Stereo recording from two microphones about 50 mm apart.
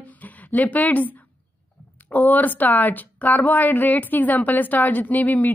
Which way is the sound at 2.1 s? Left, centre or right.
Left.